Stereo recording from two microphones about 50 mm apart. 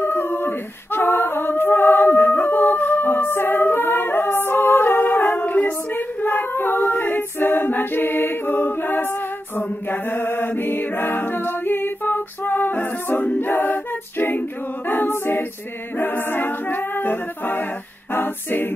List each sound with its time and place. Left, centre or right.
0.0 s a capella: left
9.6 s mantra: left
14.9 s a capella: left